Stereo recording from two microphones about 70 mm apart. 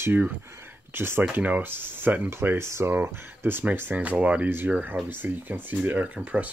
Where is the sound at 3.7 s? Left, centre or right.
Right.